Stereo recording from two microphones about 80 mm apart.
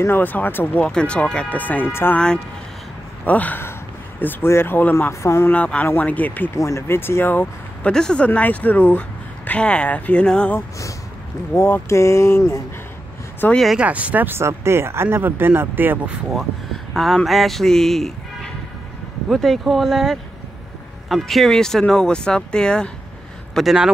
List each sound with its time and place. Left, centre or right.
0.0 s speech: left
0.8 s speech: centre; by 2.1 s left
2.1 s speech: centre
5.2 s speech: left
5.5 s speech: centre
6.5 s speech: left
7.9 s speech: centre
8.3 s speech: centre
11.5 s speech: left
13.7 s speech: centre
14.4 s speech: right
16.3 s speech: centre
23.5 s speech: centre